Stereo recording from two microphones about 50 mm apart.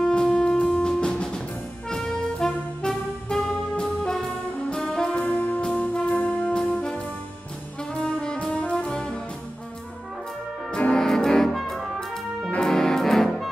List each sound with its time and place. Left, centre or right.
0.0 s music: centre
5.1 s music: left; by 9.2 s centre
10.7 s music: centre